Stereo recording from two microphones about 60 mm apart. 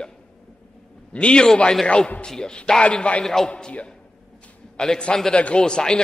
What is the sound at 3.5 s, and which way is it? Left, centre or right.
A man's voice, centre.